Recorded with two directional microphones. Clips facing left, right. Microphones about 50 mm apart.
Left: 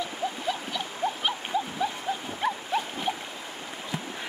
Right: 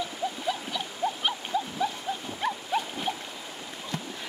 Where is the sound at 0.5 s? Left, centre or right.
Centre.